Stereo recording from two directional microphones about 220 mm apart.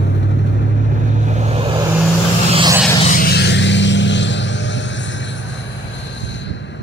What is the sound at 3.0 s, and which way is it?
Vehicle, 40° left (ahead or behind).